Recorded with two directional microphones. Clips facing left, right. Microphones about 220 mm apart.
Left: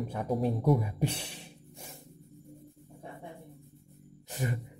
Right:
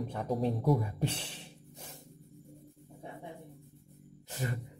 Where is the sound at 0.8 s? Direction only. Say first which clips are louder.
Left 2 dB; 15° left (ahead or behind).